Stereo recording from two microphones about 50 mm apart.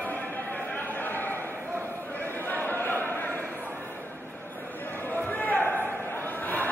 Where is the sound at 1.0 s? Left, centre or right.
Left.